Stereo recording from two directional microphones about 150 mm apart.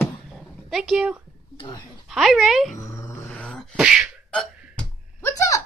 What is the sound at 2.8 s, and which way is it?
Dog, 20° left (ahead or behind).